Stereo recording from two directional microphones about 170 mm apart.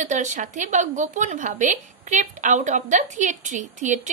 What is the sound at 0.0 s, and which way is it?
A woman's voice, 45° right (ahead or behind).